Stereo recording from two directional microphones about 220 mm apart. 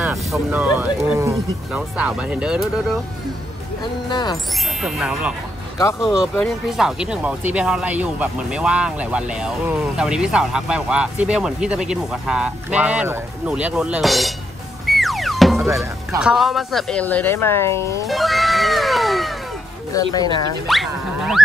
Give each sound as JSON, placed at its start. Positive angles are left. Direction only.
{"t": 0.0, "sound": "speech", "side_deg": -5}
{"t": 4.1, "sound": "speech", "side_deg": 20}
{"t": 4.8, "sound": "speech", "side_deg": -5}
{"t": 14.9, "sound": "music", "side_deg": 0}
{"t": 15.7, "sound": "speech", "side_deg": -15}
{"t": 18.0, "sound": "cat", "side_deg": 0}
{"t": 19.9, "sound": "speech", "side_deg": 15}
{"t": 20.6, "sound": "speech", "side_deg": 0}